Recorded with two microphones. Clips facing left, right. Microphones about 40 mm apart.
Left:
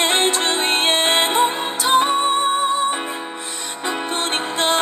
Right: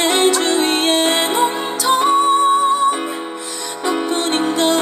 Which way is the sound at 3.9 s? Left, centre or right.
Left.